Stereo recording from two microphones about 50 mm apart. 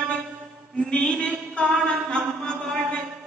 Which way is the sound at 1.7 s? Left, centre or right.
Centre.